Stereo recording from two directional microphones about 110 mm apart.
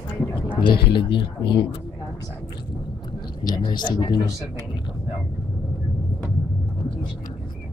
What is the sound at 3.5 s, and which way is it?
Speech, 45° left (ahead or behind).